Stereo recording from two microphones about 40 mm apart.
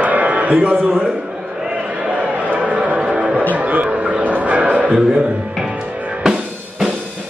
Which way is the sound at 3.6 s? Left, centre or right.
Right.